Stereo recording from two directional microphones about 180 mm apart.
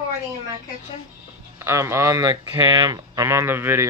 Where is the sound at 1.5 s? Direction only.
15° right (ahead or behind).